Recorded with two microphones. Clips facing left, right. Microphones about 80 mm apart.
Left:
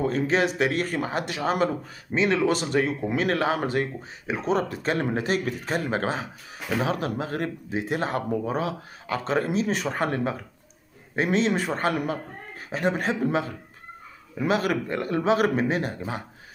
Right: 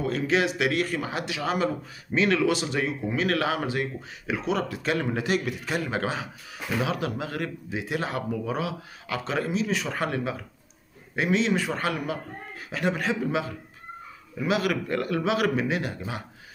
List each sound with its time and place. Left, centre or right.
0.0 s speech: left
2.1 s speech: left
2.4 s speech: left
3.2 s speech: left
14.9 s speech: left